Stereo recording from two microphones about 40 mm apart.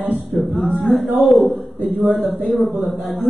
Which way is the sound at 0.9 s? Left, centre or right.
Left.